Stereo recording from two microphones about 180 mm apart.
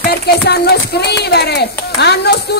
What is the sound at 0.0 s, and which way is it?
Speech, 60° left (ahead or behind).